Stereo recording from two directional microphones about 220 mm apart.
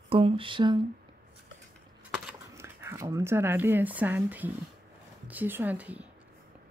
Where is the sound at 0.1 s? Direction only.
25° right (ahead or behind).